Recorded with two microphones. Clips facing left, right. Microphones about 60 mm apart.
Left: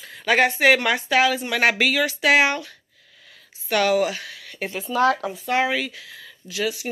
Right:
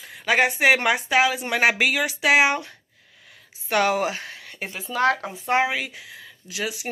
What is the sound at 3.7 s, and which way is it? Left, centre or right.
Speech, right.